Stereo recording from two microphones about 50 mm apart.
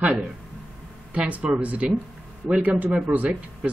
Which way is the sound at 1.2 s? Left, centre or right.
Right.